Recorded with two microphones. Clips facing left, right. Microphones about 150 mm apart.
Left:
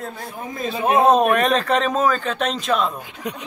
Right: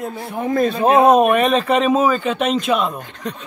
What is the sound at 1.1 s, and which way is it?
Speech, 5° right (ahead or behind).